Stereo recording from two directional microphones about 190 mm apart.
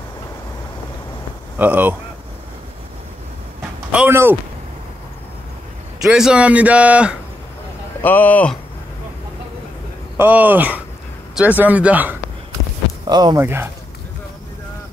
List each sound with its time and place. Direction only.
1.6 s a man's voice: 10° right (ahead or behind)
3.9 s speech: 10° right (ahead or behind)
6.0 s a man's voice: 5° right (ahead or behind)
8.0 s speech: 10° left (ahead or behind)
10.1 s a man's voice: 10° right (ahead or behind)
13.0 s speech: 20° right (ahead or behind)